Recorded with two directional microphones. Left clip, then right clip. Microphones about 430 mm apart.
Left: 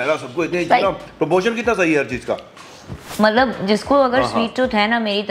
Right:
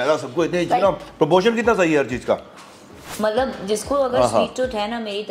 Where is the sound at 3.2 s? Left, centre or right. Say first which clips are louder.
Left 5 dB; left.